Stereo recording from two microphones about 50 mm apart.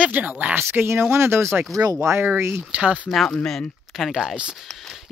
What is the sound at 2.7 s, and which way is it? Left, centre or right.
Speech, right.